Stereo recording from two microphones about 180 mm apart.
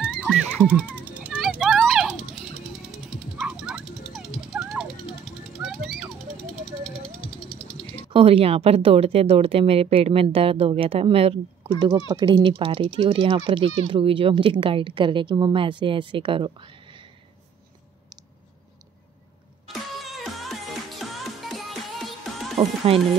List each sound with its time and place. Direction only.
0.1 s music: 5° left (ahead or behind)
0.6 s a sound: 10° right (ahead or behind)
7.2 s a sound: 30° left (ahead or behind)
8.1 s a woman's voice: 30° right (ahead or behind)
19.7 s music: centre (ahead or behind)
22.6 s music: 30° right (ahead or behind)